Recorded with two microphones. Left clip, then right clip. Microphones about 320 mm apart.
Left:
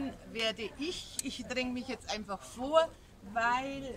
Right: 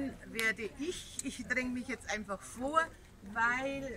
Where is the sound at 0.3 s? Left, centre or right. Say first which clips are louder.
Right 1 dB; centre.